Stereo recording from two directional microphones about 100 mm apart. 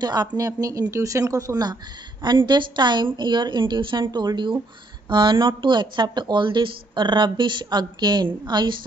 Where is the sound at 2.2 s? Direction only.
50° right (ahead or behind).